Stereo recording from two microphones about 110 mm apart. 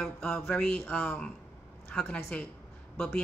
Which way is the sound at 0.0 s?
5° left (ahead or behind).